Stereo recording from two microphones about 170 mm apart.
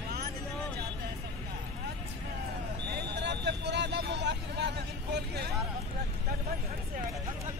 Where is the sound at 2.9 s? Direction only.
85° right.